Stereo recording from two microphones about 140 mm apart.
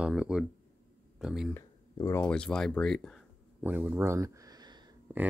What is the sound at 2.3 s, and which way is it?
Speech, 5° left (ahead or behind).